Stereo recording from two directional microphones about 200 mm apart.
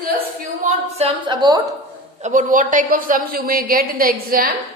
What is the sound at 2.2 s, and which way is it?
A woman's voice, 40° right (ahead or behind).